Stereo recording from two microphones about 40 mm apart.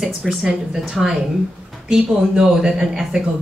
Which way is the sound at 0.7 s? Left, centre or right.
Centre.